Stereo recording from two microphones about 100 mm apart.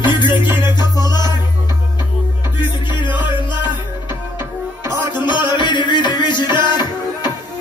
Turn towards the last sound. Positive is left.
turn(degrees=45)  # may be behind; listen again after turning